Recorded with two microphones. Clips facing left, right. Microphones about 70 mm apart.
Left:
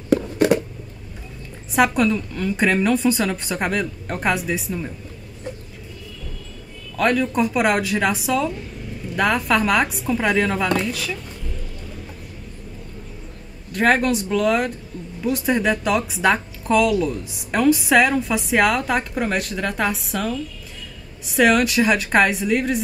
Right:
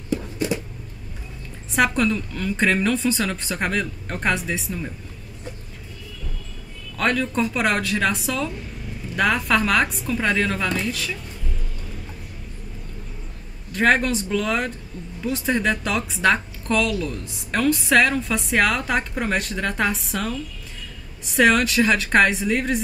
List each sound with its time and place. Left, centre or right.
0.1 s a sound: left
1.7 s a woman's voice: centre
7.0 s a woman's voice: centre
10.9 s a woman's voice: centre
13.7 s a woman's voice: centre